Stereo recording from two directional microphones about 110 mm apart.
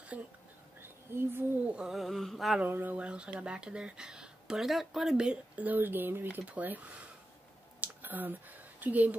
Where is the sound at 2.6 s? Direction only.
15° right (ahead or behind).